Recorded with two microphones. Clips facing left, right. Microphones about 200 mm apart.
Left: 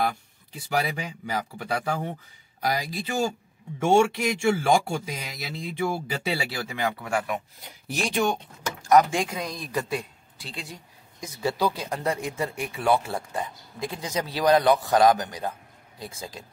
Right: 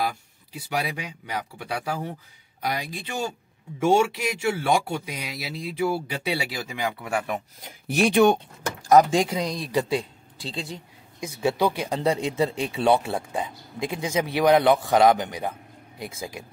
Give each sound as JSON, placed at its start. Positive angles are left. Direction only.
{"t": 0.0, "sound": "speech", "side_deg": -5}
{"t": 6.5, "sound": "speech", "side_deg": -15}
{"t": 7.6, "sound": "speech", "side_deg": -60}
{"t": 8.9, "sound": "speech", "side_deg": -35}